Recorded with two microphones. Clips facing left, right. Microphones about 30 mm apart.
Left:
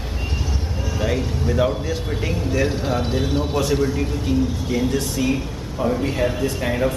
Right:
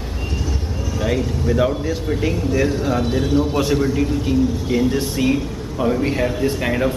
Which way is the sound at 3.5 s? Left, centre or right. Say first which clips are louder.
Right 2 dB; centre.